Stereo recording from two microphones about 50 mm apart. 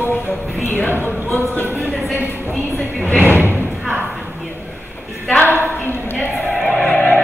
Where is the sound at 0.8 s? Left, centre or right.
Left.